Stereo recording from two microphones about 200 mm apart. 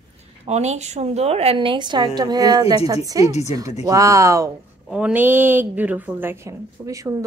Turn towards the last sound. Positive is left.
turn(degrees=-15)  # may be behind; listen again after turning